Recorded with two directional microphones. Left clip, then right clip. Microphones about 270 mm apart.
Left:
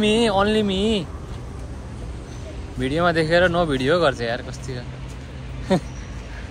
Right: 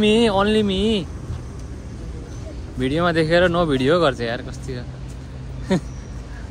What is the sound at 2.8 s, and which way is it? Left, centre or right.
Speech, centre.